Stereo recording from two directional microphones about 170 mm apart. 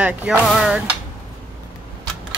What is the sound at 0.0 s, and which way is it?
Speech, 10° right (ahead or behind).